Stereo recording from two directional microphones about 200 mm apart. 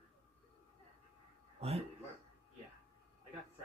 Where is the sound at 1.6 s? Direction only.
30° right (ahead or behind).